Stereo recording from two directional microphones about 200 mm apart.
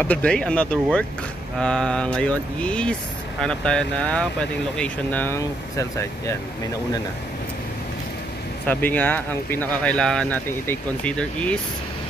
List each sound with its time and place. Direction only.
0.0 s speech: 5° left (ahead or behind)
8.6 s speech: 10° left (ahead or behind)